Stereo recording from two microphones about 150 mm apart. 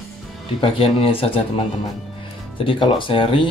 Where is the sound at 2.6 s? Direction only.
35° left (ahead or behind).